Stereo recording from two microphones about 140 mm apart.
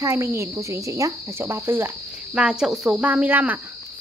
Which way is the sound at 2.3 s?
5° right (ahead or behind).